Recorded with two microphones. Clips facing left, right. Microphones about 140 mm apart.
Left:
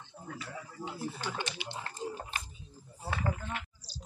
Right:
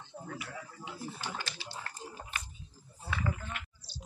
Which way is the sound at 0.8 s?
40° left (ahead or behind).